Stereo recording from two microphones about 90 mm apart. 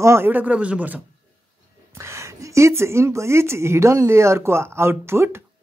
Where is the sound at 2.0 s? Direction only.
30° right (ahead or behind).